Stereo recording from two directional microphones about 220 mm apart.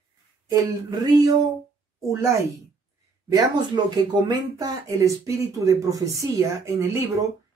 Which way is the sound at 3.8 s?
20° right (ahead or behind).